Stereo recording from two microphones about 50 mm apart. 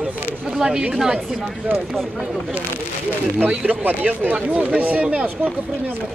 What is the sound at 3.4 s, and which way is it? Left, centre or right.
A woman's voice, right.